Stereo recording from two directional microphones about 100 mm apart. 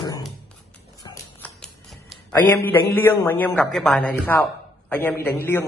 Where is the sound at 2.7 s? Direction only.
25° left (ahead or behind).